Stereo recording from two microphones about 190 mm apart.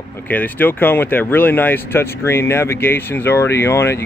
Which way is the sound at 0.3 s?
10° left (ahead or behind).